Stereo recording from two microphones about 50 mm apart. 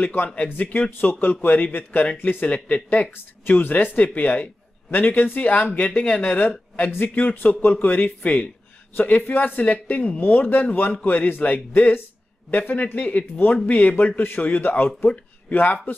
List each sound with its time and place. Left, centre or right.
0.0 s speech: left
2.4 s speech: left